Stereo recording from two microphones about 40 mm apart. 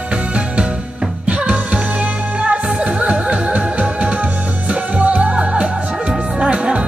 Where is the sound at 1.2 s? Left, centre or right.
Right.